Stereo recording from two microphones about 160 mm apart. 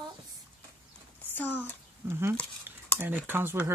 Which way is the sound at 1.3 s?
10° left (ahead or behind).